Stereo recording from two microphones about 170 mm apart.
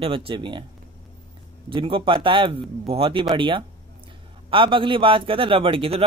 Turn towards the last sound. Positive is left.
turn(degrees=-30)  # may be behind; listen again after turning